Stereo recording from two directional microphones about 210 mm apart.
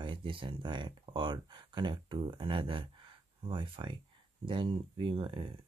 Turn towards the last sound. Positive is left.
turn(degrees=-25)  # may be behind; listen again after turning